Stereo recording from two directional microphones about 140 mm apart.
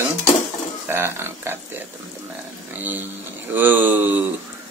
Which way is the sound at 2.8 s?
15° right (ahead or behind).